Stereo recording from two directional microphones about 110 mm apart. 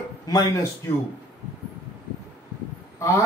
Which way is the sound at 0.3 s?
35° left (ahead or behind).